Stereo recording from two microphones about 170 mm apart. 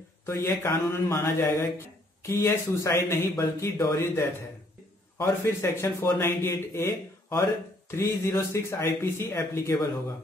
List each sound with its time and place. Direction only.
0.3 s speech: 15° left (ahead or behind)